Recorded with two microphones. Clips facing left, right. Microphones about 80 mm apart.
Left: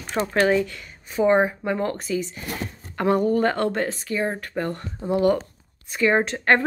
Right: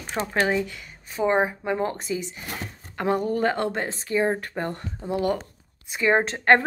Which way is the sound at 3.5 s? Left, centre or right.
Centre.